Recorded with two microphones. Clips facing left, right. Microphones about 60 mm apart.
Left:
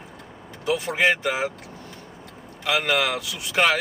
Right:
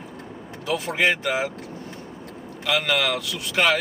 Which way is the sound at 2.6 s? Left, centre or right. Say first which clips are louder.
Even; centre.